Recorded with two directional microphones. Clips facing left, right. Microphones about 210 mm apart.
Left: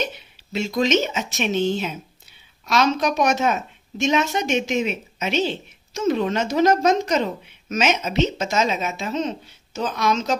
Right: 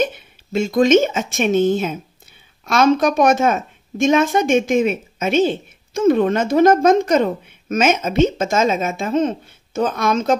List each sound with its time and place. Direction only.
0.0 s a woman's voice: 50° right (ahead or behind)